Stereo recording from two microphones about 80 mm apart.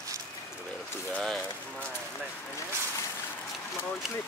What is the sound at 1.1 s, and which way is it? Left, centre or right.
Speech, centre.